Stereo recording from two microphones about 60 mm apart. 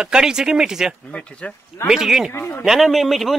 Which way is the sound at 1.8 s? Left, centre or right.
Centre.